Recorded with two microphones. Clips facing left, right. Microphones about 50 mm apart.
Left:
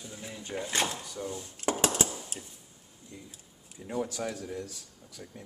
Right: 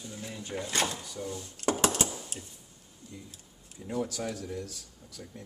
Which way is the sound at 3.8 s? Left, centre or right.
Centre.